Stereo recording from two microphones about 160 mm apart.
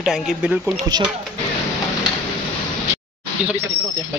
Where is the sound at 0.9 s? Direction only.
25° right (ahead or behind).